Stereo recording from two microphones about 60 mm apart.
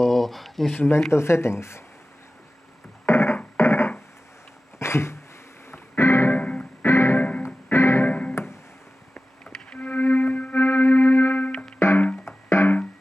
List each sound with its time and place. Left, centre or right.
0.0 s a sound: centre
0.7 s speech: left
3.1 s music: left
3.5 s a sound: left
5.7 s music: left
6.3 s music: left
6.8 s music: left
7.2 s music: left
7.4 s music: left
8.1 s music: left
9.5 s music: left
10.6 s music: left
11.8 s music: left